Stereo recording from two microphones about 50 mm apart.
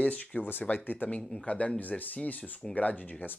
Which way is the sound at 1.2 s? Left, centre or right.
Centre.